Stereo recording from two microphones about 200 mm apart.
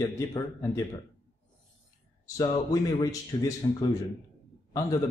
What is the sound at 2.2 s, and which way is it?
A man's voice, 20° left (ahead or behind).